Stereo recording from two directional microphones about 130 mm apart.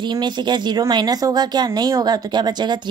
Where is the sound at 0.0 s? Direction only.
35° right (ahead or behind).